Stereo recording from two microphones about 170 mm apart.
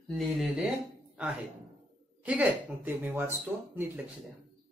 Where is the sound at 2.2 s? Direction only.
10° right (ahead or behind).